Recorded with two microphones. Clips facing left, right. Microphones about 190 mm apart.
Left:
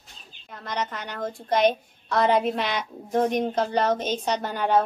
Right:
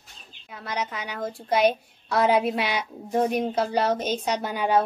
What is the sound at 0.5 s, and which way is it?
A woman's voice, 10° right (ahead or behind).